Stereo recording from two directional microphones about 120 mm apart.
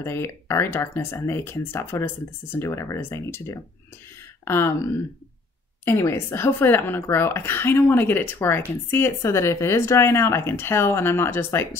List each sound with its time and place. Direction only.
0.0 s speech: 20° left (ahead or behind)